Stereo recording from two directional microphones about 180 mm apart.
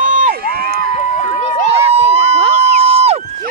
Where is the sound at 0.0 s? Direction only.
45° right (ahead or behind).